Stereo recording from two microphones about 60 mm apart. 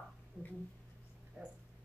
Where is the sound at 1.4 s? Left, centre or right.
Centre.